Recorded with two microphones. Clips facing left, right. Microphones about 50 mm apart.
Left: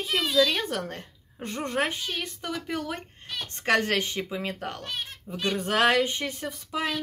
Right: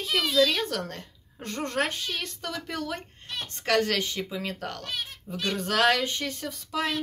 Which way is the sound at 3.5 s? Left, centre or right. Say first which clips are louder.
Left 1 dB; left.